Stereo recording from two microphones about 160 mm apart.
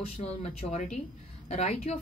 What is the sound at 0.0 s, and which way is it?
A woman's voice, 40° left (ahead or behind).